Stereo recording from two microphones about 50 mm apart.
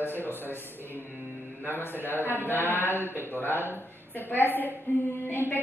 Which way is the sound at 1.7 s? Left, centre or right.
Left.